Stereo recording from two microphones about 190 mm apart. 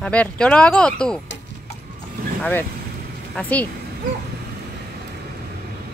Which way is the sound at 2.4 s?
10° left (ahead or behind).